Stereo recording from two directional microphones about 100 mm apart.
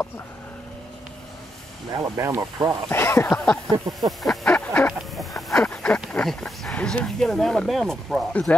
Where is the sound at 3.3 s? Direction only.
10° left (ahead or behind).